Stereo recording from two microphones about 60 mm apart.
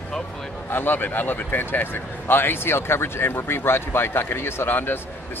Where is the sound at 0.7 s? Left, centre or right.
Left.